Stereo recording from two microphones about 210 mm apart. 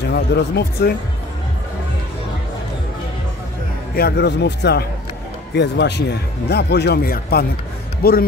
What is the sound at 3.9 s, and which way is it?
Speech, 50° left (ahead or behind).